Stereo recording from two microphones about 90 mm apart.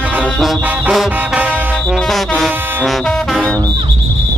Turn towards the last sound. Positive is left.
turn(degrees=5)  # may be behind; listen again after turning